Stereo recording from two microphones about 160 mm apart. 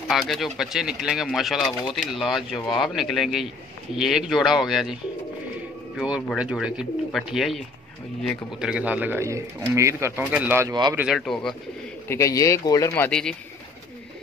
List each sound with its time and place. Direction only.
0.1 s speech: centre (ahead or behind)
5.9 s speech: 5° right (ahead or behind)
10.7 s speech: 25° right (ahead or behind)
11.0 s speech: centre (ahead or behind)
12.1 s speech: 20° left (ahead or behind)
13.1 s speech: 5° left (ahead or behind)